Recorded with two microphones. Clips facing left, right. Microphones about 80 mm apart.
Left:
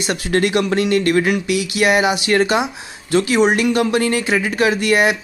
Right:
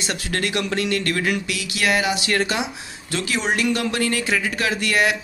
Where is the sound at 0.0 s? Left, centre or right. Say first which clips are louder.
Left 7 dB; left.